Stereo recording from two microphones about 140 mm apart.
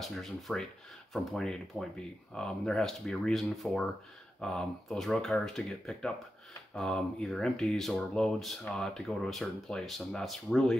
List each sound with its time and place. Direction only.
0.0 s speech: centre (ahead or behind)